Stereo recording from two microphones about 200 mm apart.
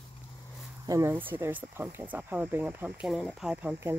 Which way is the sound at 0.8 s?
15° right (ahead or behind).